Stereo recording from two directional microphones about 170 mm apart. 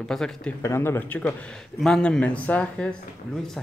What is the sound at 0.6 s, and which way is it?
A man's voice, 15° left (ahead or behind).